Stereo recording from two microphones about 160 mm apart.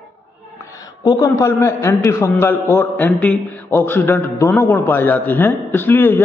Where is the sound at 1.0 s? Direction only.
20° left (ahead or behind).